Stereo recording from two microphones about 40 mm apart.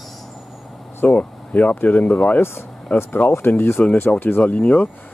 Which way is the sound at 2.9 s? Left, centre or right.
Left.